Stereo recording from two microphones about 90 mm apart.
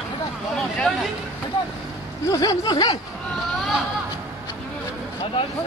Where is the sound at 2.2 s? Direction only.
45° left (ahead or behind).